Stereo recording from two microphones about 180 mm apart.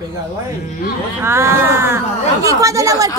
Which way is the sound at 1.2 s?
15° right (ahead or behind).